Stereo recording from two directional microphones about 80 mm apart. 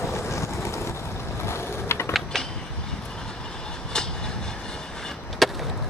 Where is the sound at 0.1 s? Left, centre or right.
Left.